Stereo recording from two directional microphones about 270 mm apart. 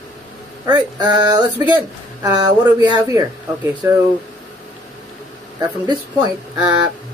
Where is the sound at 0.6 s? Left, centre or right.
Centre.